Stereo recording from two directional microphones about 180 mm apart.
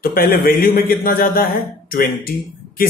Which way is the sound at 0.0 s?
55° left (ahead or behind).